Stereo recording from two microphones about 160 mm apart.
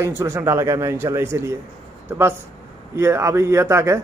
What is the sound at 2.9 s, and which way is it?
Speech, 15° right (ahead or behind).